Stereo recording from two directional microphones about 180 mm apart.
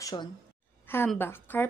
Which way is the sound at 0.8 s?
10° left (ahead or behind).